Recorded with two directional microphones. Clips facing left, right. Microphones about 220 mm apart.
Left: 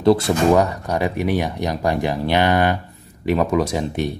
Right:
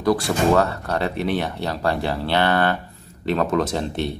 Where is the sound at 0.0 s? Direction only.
25° left (ahead or behind).